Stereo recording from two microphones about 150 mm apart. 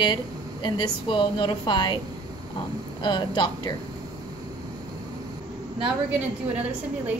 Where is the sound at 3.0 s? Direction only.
30° left (ahead or behind).